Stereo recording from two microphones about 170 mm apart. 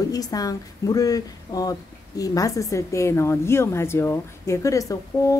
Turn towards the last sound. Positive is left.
turn(degrees=20)  # may be behind; listen again after turning